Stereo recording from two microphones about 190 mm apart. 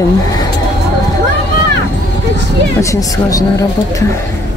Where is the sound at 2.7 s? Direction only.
20° left (ahead or behind).